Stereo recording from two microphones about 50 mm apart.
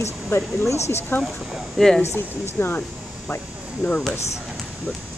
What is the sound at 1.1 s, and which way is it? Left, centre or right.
Speech, left.